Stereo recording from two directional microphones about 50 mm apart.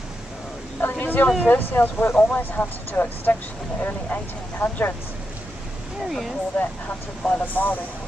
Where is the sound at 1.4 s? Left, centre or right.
Left.